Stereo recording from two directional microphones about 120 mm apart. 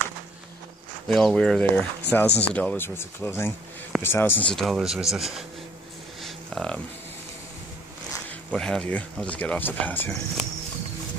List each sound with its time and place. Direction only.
1.0 s speech: 5° left (ahead or behind)
4.5 s speech: centre (ahead or behind)
6.2 s a sound: 5° left (ahead or behind)
8.3 s speech: 10° left (ahead or behind)